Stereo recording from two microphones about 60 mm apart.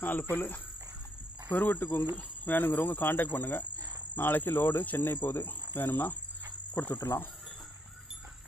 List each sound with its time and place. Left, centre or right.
0.0 s speech: left
1.5 s cricket: left